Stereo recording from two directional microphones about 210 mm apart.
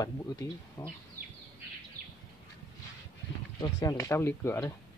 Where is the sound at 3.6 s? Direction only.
20° left (ahead or behind).